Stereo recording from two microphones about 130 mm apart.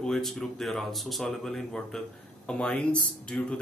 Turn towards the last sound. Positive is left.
turn(degrees=10)  # may be behind; listen again after turning